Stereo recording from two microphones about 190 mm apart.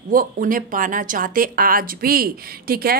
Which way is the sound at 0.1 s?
45° right (ahead or behind).